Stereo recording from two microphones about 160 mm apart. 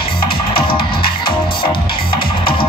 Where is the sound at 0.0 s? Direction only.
30° left (ahead or behind).